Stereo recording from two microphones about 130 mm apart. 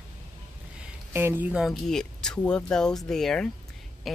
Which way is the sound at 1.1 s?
15° right (ahead or behind).